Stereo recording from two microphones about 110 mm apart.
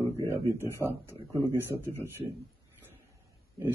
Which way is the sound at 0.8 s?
20° right (ahead or behind).